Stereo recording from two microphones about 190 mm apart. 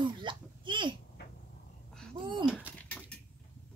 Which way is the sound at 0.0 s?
25° right (ahead or behind).